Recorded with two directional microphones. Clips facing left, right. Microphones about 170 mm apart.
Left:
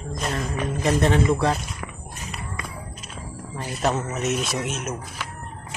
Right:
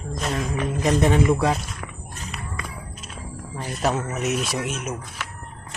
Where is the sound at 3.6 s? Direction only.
Centre (ahead or behind).